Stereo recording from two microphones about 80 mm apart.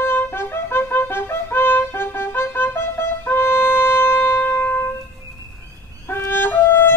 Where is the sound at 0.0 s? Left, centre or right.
Left.